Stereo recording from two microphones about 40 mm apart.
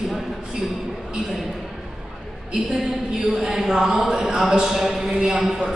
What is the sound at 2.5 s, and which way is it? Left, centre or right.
A woman's voice, centre.